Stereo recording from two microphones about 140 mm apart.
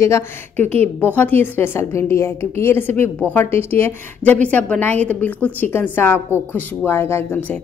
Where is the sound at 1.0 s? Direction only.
15° left (ahead or behind).